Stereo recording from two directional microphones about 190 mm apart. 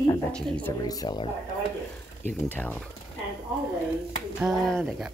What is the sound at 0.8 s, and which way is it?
Speech, 20° left (ahead or behind).